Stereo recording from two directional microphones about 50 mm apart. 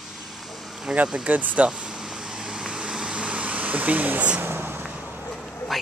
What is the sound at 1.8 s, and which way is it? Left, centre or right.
Vehicle, centre.